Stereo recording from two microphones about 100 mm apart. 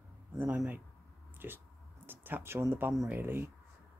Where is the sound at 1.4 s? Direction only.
20° right (ahead or behind).